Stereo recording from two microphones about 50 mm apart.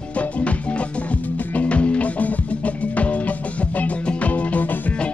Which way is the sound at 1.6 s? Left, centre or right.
Left.